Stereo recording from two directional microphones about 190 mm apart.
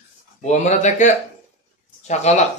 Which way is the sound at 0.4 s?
35° left (ahead or behind).